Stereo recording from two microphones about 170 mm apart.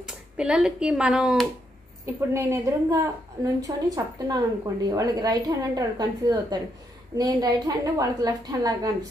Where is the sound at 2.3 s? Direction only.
15° right (ahead or behind).